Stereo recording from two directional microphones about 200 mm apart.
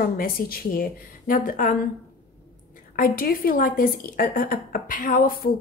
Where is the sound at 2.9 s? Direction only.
45° left (ahead or behind).